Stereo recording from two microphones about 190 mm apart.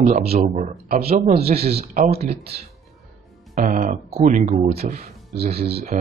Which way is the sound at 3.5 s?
45° right (ahead or behind).